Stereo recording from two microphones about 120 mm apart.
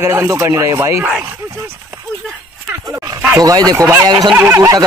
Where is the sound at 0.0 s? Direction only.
20° right (ahead or behind).